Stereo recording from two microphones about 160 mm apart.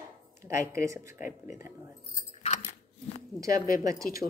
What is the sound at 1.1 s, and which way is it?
Speech, 55° left (ahead or behind).